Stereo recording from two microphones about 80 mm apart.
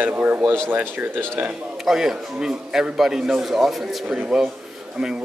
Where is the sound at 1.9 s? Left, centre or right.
Centre.